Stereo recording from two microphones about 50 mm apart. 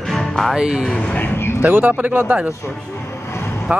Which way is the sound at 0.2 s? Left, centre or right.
Centre.